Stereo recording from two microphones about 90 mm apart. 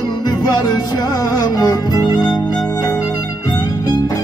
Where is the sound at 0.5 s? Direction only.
50° left (ahead or behind).